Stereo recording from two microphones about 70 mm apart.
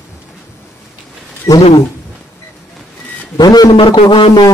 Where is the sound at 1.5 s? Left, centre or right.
Left.